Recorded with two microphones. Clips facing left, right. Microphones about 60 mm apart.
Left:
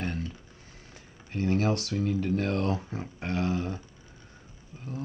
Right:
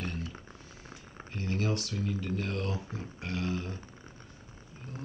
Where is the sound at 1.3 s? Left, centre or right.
Left.